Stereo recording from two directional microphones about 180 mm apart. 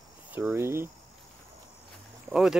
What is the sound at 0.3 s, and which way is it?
Speech, 10° right (ahead or behind).